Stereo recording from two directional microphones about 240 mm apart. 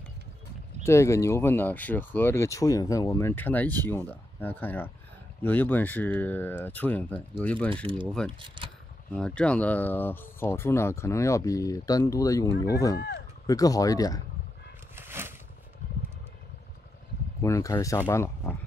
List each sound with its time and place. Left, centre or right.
0.8 s speech: centre
8.3 s speech: right
9.1 s speech: centre
12.5 s speech: left
13.5 s speech: centre
15.0 s a sound: centre
17.4 s speech: centre